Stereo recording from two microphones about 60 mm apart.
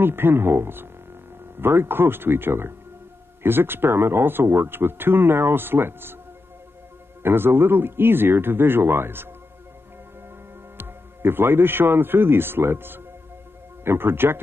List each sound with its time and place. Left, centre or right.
0.0 s speech: right
7.2 s speech: right
10.8 s speech: right